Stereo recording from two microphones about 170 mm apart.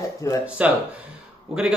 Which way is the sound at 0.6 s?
10° right (ahead or behind).